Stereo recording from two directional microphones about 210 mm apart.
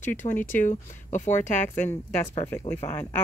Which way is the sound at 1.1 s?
35° left (ahead or behind).